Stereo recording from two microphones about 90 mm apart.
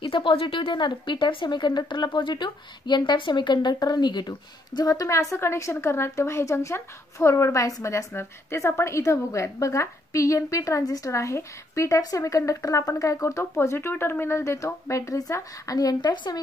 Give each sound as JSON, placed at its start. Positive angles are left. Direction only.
{"t": 0.0, "sound": "speech", "side_deg": 75}